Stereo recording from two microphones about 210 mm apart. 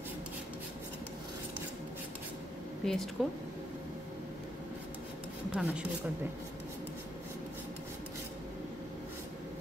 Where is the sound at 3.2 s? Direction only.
Centre (ahead or behind).